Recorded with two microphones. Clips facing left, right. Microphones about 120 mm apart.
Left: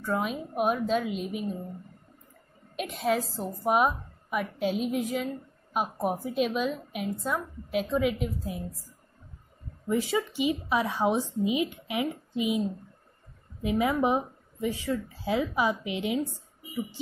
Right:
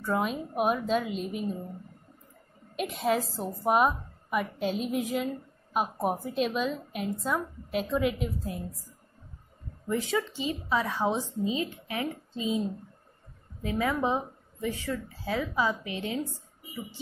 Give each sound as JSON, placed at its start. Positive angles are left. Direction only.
{"t": 0.0, "sound": "a woman's voice", "side_deg": 0}
{"t": 2.7, "sound": "a woman's voice", "side_deg": 0}
{"t": 9.8, "sound": "speech", "side_deg": 10}